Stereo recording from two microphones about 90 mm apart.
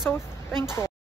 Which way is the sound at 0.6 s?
30° left (ahead or behind).